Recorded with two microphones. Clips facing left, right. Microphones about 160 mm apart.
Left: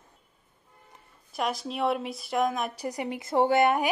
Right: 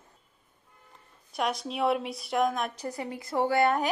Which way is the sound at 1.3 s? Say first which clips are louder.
Even; centre (ahead or behind).